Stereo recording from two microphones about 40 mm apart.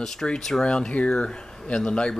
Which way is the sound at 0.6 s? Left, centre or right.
Left.